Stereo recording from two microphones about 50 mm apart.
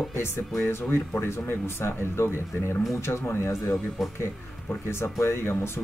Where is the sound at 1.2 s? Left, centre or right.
Left.